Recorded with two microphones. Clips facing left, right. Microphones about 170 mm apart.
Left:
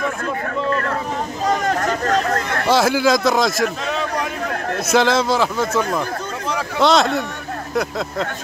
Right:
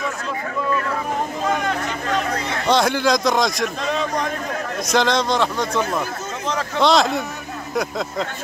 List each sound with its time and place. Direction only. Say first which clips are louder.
1.5 s a sound: left 7 dB; 40° left (ahead or behind)
2.7 s a man's voice: left 2 dB; 5° left (ahead or behind)
4.8 s a man's voice: left 3 dB; 5° left (ahead or behind)
6.8 s a man's voice: left 1 dB; centre (ahead or behind)